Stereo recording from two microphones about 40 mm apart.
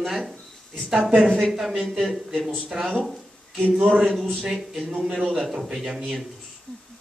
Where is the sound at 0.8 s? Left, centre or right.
Centre.